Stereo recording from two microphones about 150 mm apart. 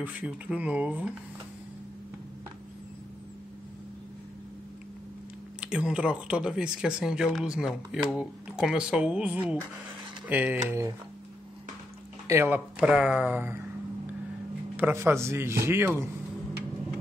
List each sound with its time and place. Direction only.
0.0 s speech: 10° right (ahead or behind)
5.6 s speech: 5° right (ahead or behind)
12.3 s speech: 15° right (ahead or behind)
14.8 s speech: 15° right (ahead or behind)